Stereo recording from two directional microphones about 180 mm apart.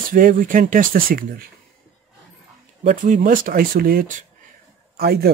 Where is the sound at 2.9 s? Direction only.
45° right (ahead or behind).